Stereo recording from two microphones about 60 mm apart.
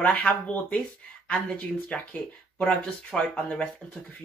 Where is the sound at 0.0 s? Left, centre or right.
Left.